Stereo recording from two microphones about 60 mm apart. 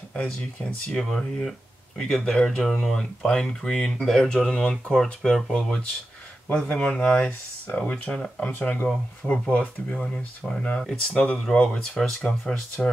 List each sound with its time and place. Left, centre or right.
0.1 s speech: centre
0.8 s speech: centre